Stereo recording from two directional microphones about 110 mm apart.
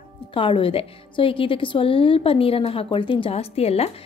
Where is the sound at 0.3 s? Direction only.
50° left (ahead or behind).